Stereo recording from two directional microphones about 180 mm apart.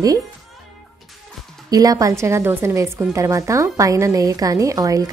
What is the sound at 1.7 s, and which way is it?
A woman's voice, 20° right (ahead or behind).